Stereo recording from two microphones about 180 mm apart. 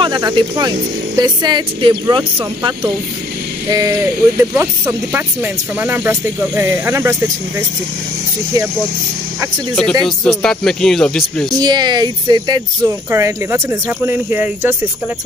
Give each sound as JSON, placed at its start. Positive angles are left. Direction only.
{"t": 0.0, "sound": "speech", "side_deg": -25}
{"t": 10.0, "sound": "speech", "side_deg": 5}
{"t": 11.5, "sound": "speech", "side_deg": -25}